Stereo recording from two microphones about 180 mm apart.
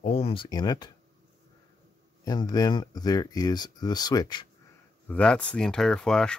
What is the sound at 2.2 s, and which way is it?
Speech, 20° left (ahead or behind).